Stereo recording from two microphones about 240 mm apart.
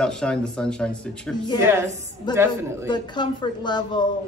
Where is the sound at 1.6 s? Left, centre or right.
Centre.